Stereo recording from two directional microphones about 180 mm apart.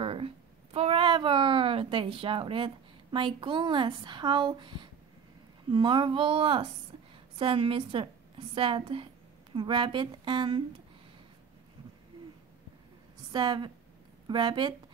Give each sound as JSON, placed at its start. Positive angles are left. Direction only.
{"t": 0.0, "sound": "a sound", "side_deg": -30}
{"t": 0.7, "sound": "a woman's voice", "side_deg": -30}
{"t": 13.3, "sound": "a woman's voice", "side_deg": -25}